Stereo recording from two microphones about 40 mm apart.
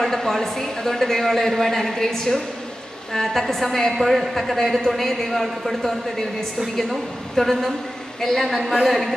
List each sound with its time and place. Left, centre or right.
0.0 s a woman's voice: centre
7.3 s a woman's voice: centre